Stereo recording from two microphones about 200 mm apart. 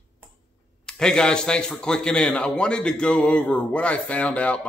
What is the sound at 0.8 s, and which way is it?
A man's voice, 5° left (ahead or behind).